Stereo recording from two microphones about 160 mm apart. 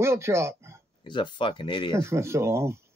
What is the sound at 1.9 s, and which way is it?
Speech, 15° right (ahead or behind).